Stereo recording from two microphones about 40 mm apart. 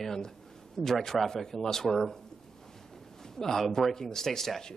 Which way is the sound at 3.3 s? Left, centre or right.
Centre.